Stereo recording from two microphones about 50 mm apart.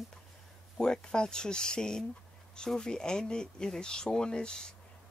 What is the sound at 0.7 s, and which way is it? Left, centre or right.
Speech, centre.